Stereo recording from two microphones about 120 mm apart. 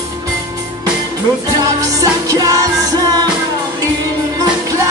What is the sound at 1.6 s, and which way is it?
Music, 30° right (ahead or behind).